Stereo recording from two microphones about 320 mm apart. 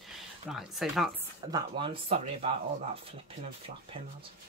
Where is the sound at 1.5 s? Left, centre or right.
Centre.